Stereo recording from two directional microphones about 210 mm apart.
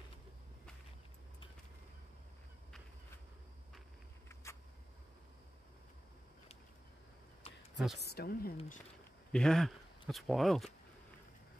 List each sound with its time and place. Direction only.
4.4 s a sound: 15° left (ahead or behind)
7.7 s a woman's voice: centre (ahead or behind)
8.0 s a woman's voice: 50° left (ahead or behind)
9.3 s speech: 5° left (ahead or behind)